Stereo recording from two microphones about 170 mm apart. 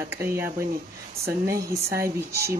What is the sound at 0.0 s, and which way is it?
Speech, 15° right (ahead or behind).